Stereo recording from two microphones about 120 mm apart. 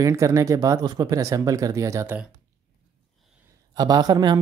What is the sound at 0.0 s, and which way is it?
Speech, 25° right (ahead or behind).